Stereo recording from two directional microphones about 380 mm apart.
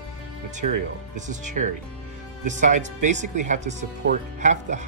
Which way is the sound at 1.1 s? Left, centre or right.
Centre.